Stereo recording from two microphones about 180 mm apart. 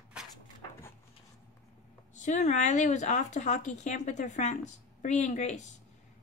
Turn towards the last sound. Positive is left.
turn(degrees=40)  # may be behind; listen again after turning